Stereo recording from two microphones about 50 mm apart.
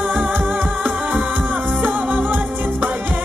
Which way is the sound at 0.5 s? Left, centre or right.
Right.